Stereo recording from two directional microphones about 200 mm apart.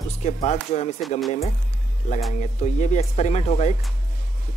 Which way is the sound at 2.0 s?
35° left (ahead or behind).